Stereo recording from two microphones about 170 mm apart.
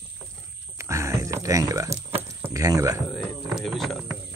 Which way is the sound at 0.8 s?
15° right (ahead or behind).